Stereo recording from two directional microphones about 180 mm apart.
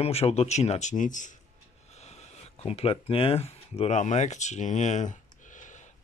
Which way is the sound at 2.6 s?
35° left (ahead or behind).